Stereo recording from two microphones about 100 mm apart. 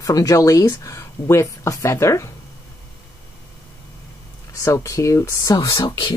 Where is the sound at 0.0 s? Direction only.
35° left (ahead or behind).